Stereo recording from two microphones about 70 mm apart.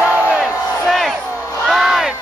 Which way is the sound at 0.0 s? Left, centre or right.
Centre.